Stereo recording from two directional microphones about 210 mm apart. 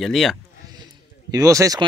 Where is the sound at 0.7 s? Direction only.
20° right (ahead or behind).